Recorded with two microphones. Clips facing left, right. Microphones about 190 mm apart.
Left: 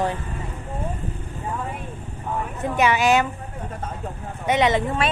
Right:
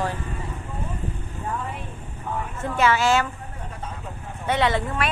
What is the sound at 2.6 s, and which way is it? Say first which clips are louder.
Speech: left 1 dB; 15° left (ahead or behind).